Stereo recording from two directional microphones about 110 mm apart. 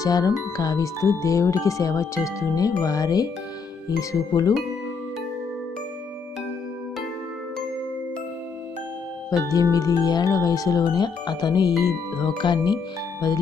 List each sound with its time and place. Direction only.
0.0 s speech: 30° left (ahead or behind)
9.3 s speech: 30° left (ahead or behind)